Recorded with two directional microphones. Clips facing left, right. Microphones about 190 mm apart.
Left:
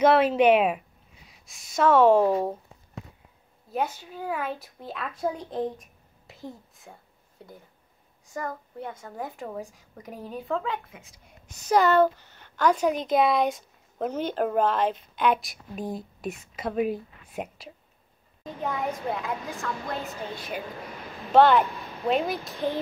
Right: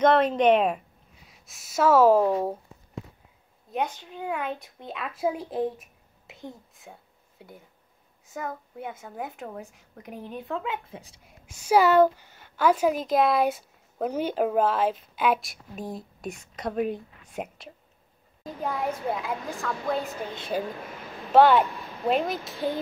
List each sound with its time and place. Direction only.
0.0 s speech: 5° left (ahead or behind)
1.4 s a woman's voice: 5° right (ahead or behind)
3.7 s a woman's voice: 5° left (ahead or behind)
8.3 s a woman's voice: 5° right (ahead or behind)
10.9 s speech: 35° right (ahead or behind)
11.2 s a woman's voice: 10° right (ahead or behind)
20.3 s speech: 30° right (ahead or behind)
21.3 s speech: 5° right (ahead or behind)